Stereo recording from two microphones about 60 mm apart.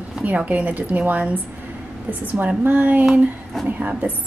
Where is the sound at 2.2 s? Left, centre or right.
Right.